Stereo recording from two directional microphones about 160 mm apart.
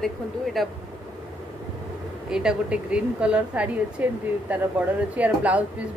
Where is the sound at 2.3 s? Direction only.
5° right (ahead or behind).